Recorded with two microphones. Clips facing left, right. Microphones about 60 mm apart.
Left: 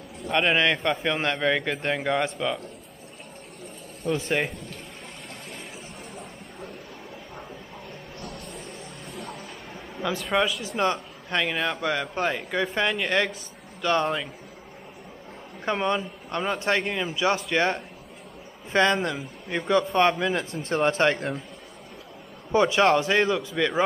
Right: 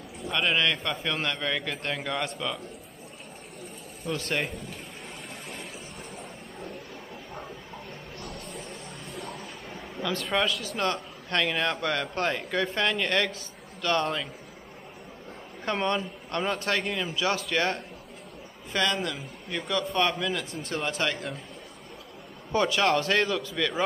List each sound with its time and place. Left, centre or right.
0.4 s a man's voice: left
4.2 s a man's voice: centre
8.2 s a sound: centre
10.3 s a man's voice: centre
11.4 s a man's voice: centre
15.6 s a man's voice: centre
16.5 s a man's voice: left
22.5 s a man's voice: left